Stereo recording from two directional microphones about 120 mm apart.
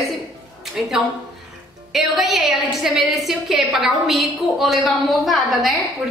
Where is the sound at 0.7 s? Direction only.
5° right (ahead or behind).